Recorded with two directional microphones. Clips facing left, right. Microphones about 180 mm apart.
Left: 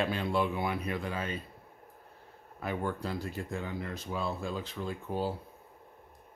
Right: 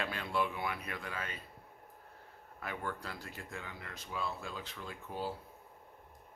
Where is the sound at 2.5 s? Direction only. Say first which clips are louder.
Left 7 dB; 25° left (ahead or behind).